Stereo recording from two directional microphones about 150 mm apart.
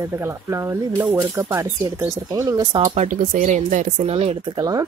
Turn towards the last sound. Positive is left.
turn(degrees=-25)  # may be behind; listen again after turning